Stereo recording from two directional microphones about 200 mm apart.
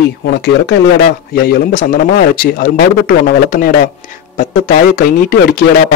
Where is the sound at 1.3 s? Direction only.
50° left (ahead or behind).